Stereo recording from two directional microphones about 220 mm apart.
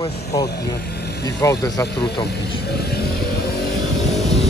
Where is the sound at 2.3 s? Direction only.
45° left (ahead or behind).